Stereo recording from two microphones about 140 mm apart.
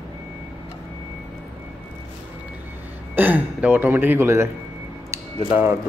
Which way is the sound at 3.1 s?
10° right (ahead or behind).